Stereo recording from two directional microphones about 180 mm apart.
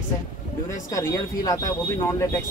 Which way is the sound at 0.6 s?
15° left (ahead or behind).